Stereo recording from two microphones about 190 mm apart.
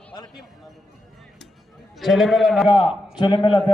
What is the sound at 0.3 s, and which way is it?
Speech, centre (ahead or behind).